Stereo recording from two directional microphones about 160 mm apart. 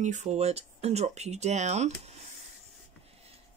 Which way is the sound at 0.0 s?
50° right (ahead or behind).